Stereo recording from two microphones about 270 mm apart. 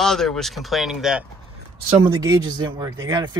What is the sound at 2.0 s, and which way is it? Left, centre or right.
Speech, centre.